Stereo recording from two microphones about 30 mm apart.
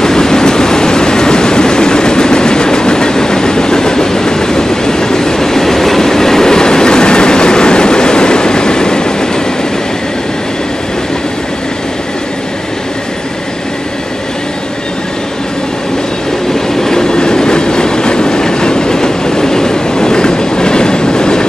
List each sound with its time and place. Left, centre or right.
0.0 s vehicle: centre
16.5 s train: centre